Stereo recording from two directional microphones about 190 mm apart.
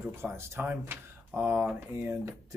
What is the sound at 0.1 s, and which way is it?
Speech, 15° right (ahead or behind).